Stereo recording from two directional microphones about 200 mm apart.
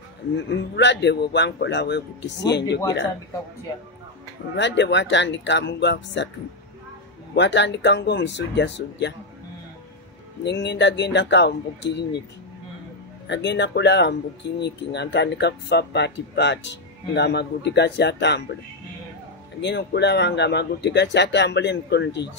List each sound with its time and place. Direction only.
0.4 s speech: 60° left (ahead or behind)
4.6 s speech: 60° left (ahead or behind)
7.3 s speech: 60° left (ahead or behind)
10.4 s speech: 60° left (ahead or behind)
13.3 s speech: 60° left (ahead or behind)
19.6 s speech: 60° left (ahead or behind)